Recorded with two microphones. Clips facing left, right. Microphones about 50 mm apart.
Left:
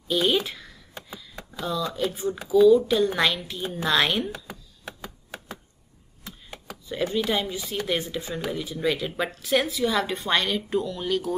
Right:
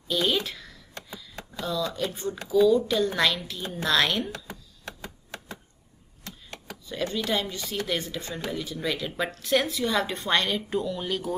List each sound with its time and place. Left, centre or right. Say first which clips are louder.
0.1 s speech: left 3 dB; centre
4.3 s computer keyboard: left 1 dB; centre
6.2 s speech: left 1 dB; centre